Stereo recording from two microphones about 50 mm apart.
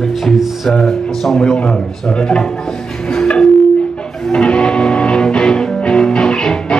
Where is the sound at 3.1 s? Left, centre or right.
Centre.